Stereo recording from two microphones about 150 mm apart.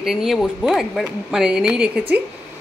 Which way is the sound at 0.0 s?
Centre (ahead or behind).